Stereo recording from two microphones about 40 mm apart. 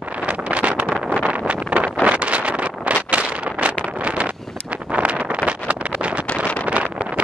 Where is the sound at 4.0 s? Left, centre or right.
Right.